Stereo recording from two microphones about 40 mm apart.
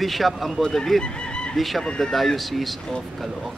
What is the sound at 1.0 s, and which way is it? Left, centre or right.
Music, left.